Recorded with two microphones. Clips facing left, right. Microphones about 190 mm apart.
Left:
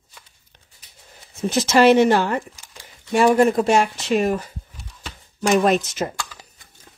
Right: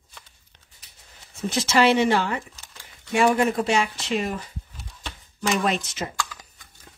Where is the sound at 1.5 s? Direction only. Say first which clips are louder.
Left 6 dB; 45° left (ahead or behind).